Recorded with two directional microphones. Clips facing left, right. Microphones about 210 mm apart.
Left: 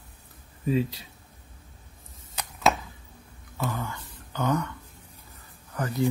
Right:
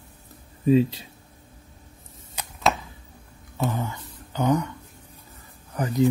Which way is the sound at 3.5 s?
20° right (ahead or behind).